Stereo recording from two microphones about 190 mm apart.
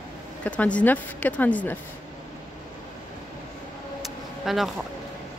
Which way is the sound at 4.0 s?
Centre (ahead or behind).